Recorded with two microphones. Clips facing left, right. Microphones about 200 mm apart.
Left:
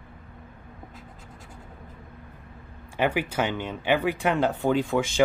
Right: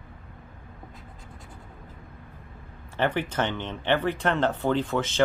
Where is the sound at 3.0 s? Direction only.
10° left (ahead or behind).